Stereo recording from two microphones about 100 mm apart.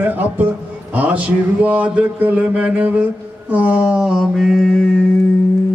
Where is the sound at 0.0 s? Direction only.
20° right (ahead or behind).